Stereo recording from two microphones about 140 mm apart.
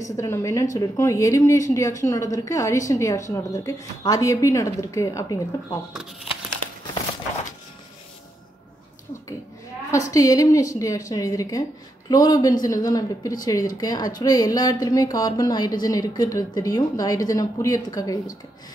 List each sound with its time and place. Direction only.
0.2 s a woman's voice: 20° left (ahead or behind)
9.8 s a woman's voice: 25° left (ahead or behind)